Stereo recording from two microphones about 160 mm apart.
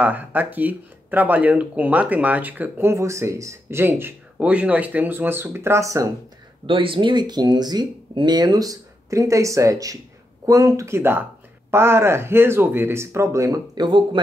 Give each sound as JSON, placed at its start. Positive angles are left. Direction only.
{"t": 0.0, "sound": "speech", "side_deg": -10}
{"t": 6.6, "sound": "speech", "side_deg": -35}